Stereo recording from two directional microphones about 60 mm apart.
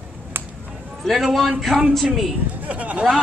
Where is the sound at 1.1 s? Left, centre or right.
Centre.